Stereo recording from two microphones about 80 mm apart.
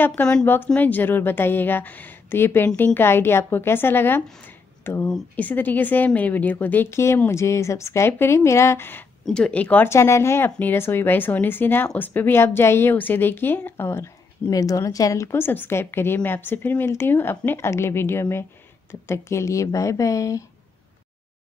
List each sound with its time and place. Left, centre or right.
0.0 s a woman's voice: left
9.2 s speech: centre
9.8 s a woman's voice: left
14.5 s a woman's voice: left